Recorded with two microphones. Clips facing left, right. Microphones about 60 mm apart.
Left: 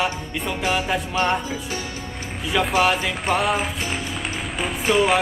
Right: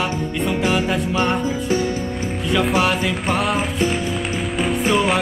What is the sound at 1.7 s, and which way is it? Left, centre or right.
Music, right.